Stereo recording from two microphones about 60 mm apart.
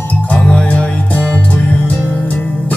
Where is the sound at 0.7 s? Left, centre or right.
Left.